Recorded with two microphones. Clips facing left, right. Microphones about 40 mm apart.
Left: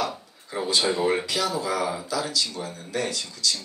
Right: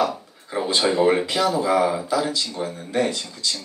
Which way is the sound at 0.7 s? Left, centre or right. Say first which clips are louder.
Right 4 dB; right.